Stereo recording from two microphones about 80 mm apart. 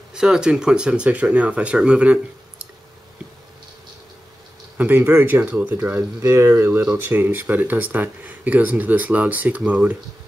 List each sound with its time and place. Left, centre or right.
0.1 s speech: centre
4.7 s speech: right